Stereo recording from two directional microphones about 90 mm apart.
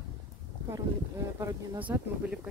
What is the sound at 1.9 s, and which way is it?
Speech, 25° right (ahead or behind).